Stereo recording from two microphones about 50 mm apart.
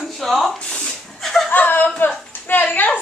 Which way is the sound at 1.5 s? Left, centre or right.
Left.